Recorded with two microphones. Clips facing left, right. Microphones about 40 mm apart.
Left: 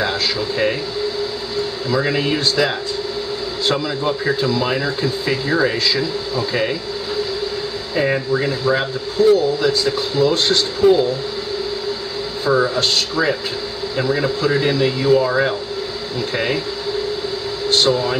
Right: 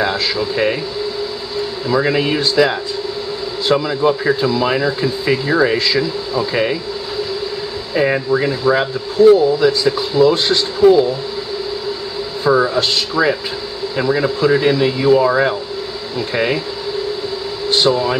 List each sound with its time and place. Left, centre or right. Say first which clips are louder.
0.0 s a sound: right 2 dB; centre
1.9 s speech: right 4 dB; centre
7.9 s speech: right 3 dB; centre
12.4 s speech: right 3 dB; centre
17.6 s speech: right 2 dB; centre